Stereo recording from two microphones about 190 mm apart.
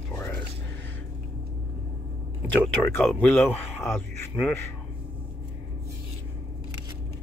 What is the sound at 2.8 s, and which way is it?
Speech, 10° left (ahead or behind).